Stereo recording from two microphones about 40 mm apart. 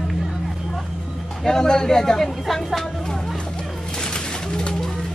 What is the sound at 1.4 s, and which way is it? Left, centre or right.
A woman's voice, centre.